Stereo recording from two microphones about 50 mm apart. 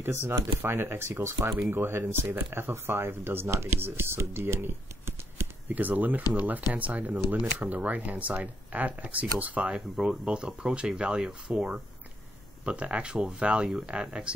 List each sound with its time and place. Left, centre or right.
0.0 s speech: right
5.8 s speech: right
9.8 s speech: centre